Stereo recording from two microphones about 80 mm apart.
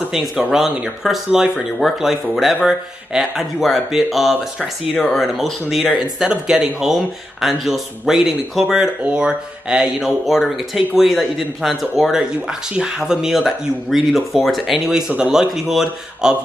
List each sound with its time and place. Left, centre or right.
0.5 s speech: centre
4.6 s speech: centre
5.1 s speech: centre
15.4 s speech: centre